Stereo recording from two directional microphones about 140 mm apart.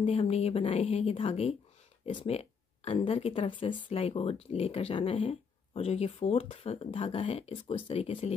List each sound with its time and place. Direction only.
0.0 s speech: 45° left (ahead or behind)